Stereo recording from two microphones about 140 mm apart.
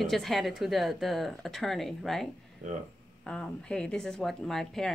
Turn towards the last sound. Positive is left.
turn(degrees=0)  # may be behind; listen again after turning